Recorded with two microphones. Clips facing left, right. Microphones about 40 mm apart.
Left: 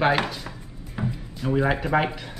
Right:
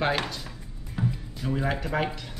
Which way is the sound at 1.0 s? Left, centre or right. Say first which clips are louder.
Even; centre.